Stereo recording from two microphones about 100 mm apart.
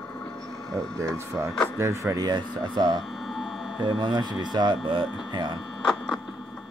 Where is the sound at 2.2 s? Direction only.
50° right (ahead or behind).